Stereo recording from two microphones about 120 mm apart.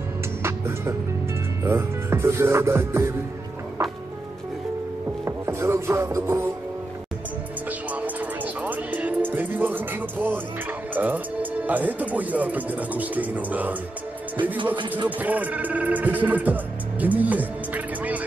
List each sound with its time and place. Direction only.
0.4 s music: 20° right (ahead or behind)
1.6 s speech: 20° right (ahead or behind)
5.2 s music: 20° right (ahead or behind)
7.9 s music: 15° right (ahead or behind)
11.0 s speech: 15° right (ahead or behind)
15.0 s speech: 15° right (ahead or behind)